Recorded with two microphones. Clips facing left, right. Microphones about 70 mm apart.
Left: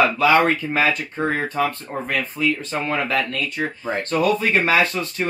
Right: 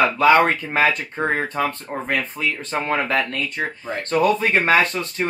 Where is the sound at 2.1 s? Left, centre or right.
Right.